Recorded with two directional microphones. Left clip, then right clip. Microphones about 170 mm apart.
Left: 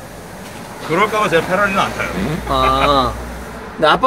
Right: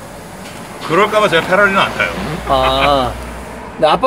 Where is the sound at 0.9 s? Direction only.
45° left (ahead or behind).